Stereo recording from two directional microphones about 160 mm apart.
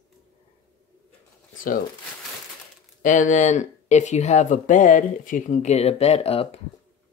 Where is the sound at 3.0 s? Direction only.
50° left (ahead or behind).